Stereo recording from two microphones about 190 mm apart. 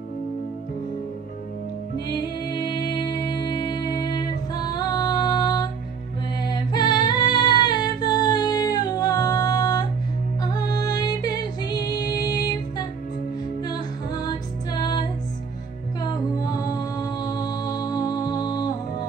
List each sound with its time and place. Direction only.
2.5 s music: 20° left (ahead or behind)
6.4 s female singing: 20° left (ahead or behind)
10.4 s music: 20° left (ahead or behind)